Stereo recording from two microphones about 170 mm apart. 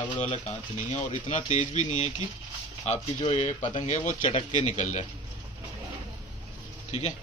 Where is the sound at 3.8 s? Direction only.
45° left (ahead or behind).